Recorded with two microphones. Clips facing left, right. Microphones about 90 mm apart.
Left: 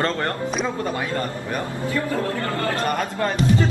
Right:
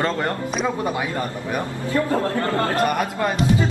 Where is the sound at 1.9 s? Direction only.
30° right (ahead or behind).